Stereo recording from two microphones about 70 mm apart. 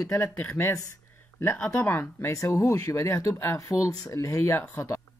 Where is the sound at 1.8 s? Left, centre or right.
Left.